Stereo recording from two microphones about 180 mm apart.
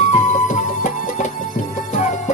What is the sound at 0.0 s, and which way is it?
Music, 45° left (ahead or behind).